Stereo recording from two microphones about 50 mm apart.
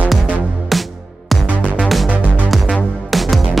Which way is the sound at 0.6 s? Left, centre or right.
Centre.